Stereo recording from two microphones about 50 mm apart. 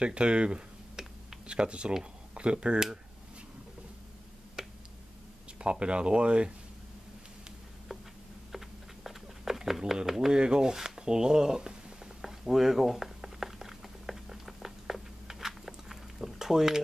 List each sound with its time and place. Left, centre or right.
0.0 s speech: right
4.6 s finger snapping: centre
5.6 s speech: right
8.5 s a sound: centre
10.4 s speech: centre
12.2 s a sound: centre